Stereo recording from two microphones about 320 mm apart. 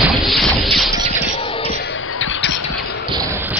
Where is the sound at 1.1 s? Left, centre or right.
Centre.